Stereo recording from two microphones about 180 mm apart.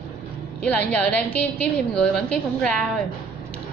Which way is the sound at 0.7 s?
10° left (ahead or behind).